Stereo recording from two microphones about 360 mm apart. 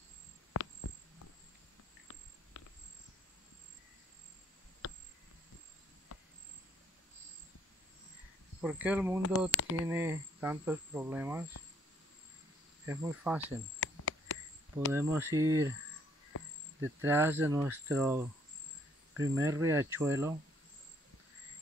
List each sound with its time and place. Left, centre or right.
0.5 s insect: left
8.5 s speech: centre
9.5 s speech: left
9.8 s speech: centre
12.8 s speech: centre
13.4 s cricket: left
14.9 s speech: centre
17.0 s speech: centre